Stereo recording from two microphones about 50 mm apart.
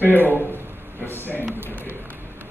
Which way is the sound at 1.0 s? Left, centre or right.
Left.